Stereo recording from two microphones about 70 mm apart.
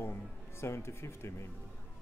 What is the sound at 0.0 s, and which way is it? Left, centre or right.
Speech, left.